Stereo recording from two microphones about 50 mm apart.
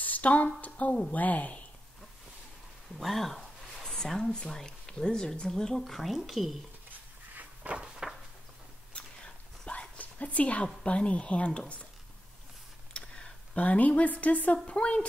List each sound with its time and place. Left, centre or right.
0.0 s a sound: left
0.6 s a woman's voice: left
3.0 s speech: centre
6.9 s a sound: right
7.7 s a sound: centre
8.9 s whispering: left
10.9 s speech: left
12.9 s tick: centre
13.6 s speech: left